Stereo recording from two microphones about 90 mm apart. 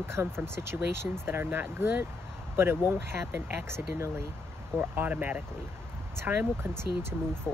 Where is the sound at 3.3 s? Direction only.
30° right (ahead or behind).